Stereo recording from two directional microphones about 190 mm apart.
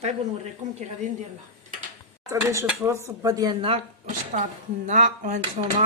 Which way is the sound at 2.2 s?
15° right (ahead or behind).